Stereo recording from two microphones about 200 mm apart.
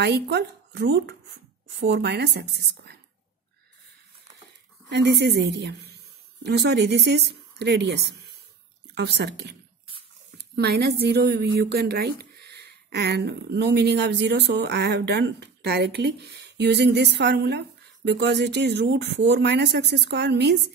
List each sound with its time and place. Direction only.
0.0 s a woman's voice: 55° right (ahead or behind)
4.8 s a woman's voice: 60° right (ahead or behind)